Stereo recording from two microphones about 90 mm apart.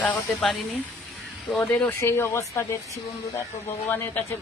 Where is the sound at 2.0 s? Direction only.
30° left (ahead or behind).